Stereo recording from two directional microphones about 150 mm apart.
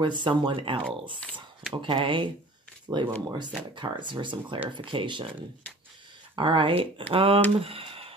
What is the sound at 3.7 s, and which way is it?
Speech, 30° right (ahead or behind).